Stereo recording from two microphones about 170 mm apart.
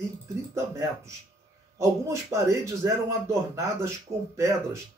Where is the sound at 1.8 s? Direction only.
15° right (ahead or behind).